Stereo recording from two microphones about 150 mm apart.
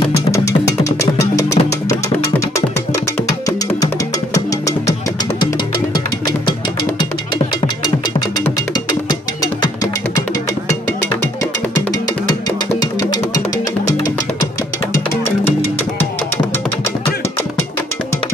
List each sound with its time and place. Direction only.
0.3 s music: 20° left (ahead or behind)
3.4 s music: 20° left (ahead or behind)
5.9 s music: 30° left (ahead or behind)
11.9 s music: 25° left (ahead or behind)
14.9 s music: 15° left (ahead or behind)